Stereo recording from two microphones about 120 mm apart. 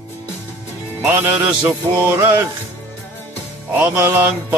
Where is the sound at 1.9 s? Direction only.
15° right (ahead or behind).